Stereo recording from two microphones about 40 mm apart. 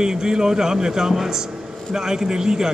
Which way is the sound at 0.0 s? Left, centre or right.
Centre.